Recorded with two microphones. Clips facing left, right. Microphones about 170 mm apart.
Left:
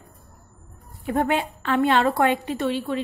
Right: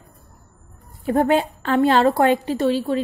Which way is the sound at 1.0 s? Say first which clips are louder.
Right 5 dB; 35° right (ahead or behind).